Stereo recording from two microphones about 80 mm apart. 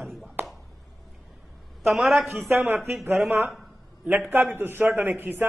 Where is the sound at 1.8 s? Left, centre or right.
Centre.